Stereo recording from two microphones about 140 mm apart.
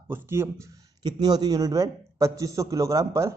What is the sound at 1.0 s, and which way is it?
A man's voice, 30° right (ahead or behind).